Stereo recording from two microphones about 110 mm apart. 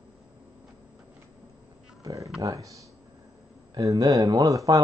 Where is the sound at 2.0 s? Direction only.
30° right (ahead or behind).